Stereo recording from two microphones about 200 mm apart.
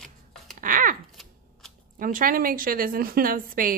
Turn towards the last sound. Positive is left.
turn(degrees=-45)  # may be behind; listen again after turning